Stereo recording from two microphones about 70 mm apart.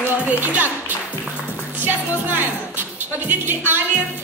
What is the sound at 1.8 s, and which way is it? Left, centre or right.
Music, right.